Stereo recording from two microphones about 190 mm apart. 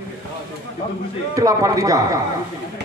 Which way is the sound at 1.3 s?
15° right (ahead or behind).